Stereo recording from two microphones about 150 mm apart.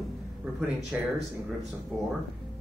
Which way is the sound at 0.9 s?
10° right (ahead or behind).